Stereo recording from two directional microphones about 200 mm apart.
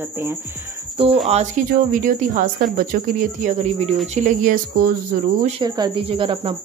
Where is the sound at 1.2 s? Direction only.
35° right (ahead or behind).